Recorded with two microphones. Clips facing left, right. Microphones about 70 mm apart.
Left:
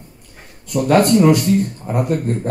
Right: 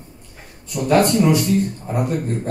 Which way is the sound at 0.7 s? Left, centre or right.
Left.